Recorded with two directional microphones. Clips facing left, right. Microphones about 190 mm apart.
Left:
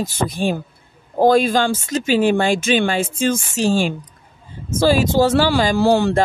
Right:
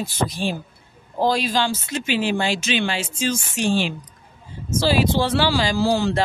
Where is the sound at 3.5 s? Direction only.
40° left (ahead or behind).